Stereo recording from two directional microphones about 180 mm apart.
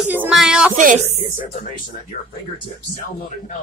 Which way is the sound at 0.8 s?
45° right (ahead or behind).